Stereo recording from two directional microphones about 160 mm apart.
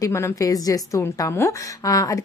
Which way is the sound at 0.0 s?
20° left (ahead or behind).